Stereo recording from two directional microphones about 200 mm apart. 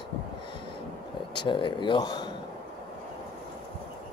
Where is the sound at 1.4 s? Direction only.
25° left (ahead or behind).